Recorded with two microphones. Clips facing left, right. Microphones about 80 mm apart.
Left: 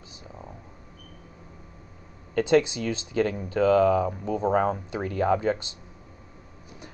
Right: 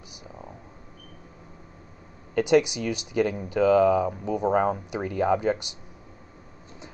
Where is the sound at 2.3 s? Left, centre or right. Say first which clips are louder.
Right 1 dB; centre.